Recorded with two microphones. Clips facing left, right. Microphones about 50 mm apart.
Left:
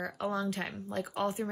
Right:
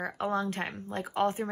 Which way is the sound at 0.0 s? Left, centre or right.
Right.